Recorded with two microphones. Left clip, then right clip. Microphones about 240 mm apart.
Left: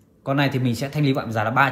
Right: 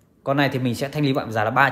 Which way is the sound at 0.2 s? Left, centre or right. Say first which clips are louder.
Right 1 dB; right.